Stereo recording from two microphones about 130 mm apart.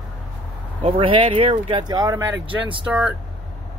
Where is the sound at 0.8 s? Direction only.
45° right (ahead or behind).